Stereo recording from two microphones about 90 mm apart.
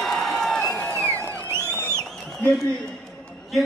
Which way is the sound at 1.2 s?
25° right (ahead or behind).